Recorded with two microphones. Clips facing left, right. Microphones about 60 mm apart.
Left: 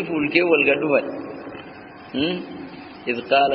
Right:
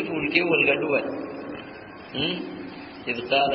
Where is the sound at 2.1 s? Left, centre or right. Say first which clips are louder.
Left 6 dB; left.